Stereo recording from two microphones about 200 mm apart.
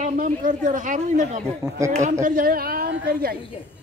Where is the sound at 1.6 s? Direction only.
15° right (ahead or behind).